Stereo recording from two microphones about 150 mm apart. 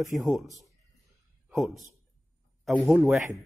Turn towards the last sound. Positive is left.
turn(degrees=0)  # may be behind; listen again after turning